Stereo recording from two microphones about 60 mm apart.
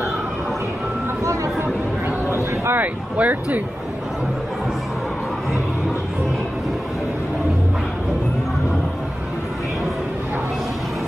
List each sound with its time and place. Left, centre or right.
1.2 s vehicle: right
2.3 s a sound: right
2.8 s speech: right